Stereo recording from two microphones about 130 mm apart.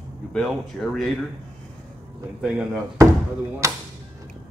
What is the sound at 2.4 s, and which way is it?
Speech, 5° right (ahead or behind).